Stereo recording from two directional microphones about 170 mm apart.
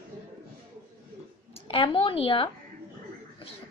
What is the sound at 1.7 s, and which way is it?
Speech, 30° left (ahead or behind).